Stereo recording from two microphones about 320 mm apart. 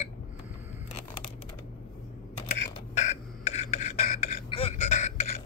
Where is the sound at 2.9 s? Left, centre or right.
Left.